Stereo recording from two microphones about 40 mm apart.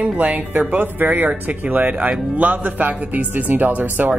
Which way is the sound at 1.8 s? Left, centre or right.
Right.